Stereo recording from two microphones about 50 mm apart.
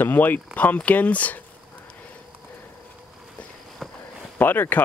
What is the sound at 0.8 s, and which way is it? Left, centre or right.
Speech, left.